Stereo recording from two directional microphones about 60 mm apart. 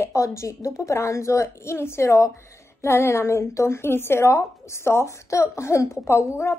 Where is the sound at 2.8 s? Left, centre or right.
Left.